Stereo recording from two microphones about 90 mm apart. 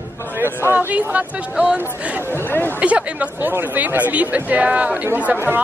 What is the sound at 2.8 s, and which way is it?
Speech, 15° right (ahead or behind).